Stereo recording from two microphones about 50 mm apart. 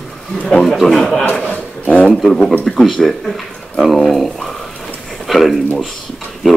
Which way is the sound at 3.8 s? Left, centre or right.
Centre.